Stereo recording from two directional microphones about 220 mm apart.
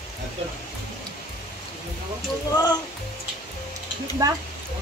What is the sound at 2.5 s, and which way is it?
Speech, 20° left (ahead or behind).